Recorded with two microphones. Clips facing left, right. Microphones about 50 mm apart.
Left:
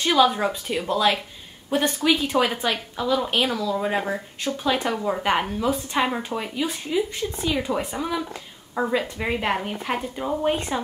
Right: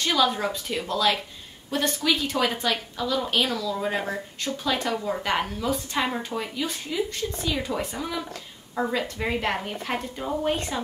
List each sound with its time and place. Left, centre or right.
0.0 s speech: centre